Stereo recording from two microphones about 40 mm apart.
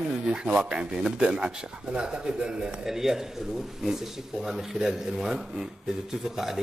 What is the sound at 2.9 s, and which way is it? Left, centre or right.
Speech, centre.